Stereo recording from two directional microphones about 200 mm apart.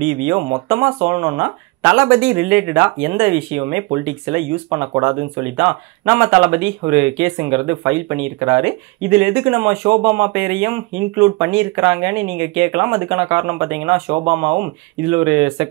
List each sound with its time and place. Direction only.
0.0 s speech: 10° right (ahead or behind)